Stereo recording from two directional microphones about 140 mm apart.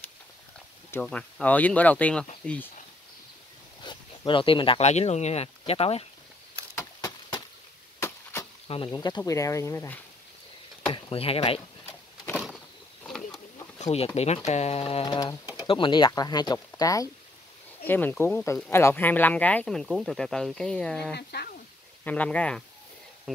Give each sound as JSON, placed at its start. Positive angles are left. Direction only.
{"t": 1.0, "sound": "speech", "side_deg": 10}
{"t": 3.8, "sound": "speech", "side_deg": 35}
{"t": 7.0, "sound": "a sound", "side_deg": 30}
{"t": 8.0, "sound": "chop", "side_deg": 15}
{"t": 8.6, "sound": "speech", "side_deg": 40}
{"t": 10.9, "sound": "speech", "side_deg": 40}
{"t": 12.4, "sound": "a sound", "side_deg": 0}
{"t": 13.7, "sound": "speech", "side_deg": 50}
{"t": 15.0, "sound": "speech", "side_deg": 30}
{"t": 17.8, "sound": "speech", "side_deg": 15}
{"t": 23.3, "sound": "speech", "side_deg": 0}